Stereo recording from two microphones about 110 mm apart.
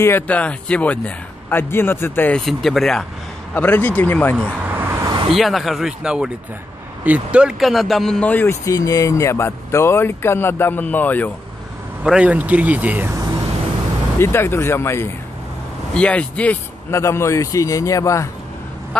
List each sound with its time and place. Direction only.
0.0 s speech: 15° left (ahead or behind)
2.3 s speech: centre (ahead or behind)
3.5 s speech: 15° left (ahead or behind)
4.4 s vehicle: 20° right (ahead or behind)
5.3 s speech: centre (ahead or behind)
8.5 s speech: 30° left (ahead or behind); by 11.3 s 15° left (ahead or behind)
12.0 s speech: 10° right (ahead or behind)
14.1 s speech: 20° left (ahead or behind)
15.9 s speech: 10° left (ahead or behind)
16.9 s speech: 25° left (ahead or behind)